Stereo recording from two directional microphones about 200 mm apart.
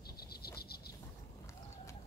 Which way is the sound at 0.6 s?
50° left (ahead or behind).